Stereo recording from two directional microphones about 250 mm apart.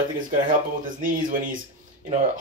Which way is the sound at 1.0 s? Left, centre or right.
Right.